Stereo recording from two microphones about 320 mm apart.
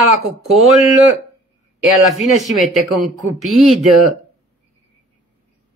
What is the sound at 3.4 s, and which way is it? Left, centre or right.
Speech, centre.